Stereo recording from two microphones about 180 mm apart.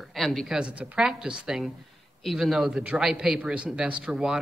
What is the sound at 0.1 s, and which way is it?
Speech, centre (ahead or behind).